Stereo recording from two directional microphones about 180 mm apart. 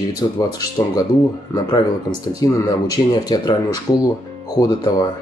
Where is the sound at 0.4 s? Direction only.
20° left (ahead or behind).